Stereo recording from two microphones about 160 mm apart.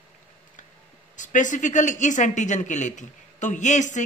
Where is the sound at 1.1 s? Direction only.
50° left (ahead or behind).